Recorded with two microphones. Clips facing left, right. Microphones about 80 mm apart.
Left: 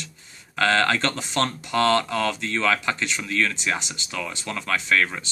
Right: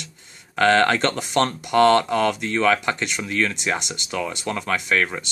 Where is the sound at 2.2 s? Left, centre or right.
Centre.